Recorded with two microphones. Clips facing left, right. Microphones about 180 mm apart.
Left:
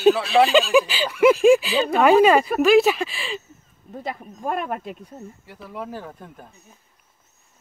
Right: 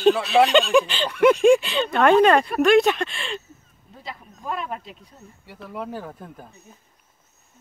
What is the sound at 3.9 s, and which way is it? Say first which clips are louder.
Speech: left 7 dB; 50° left (ahead or behind).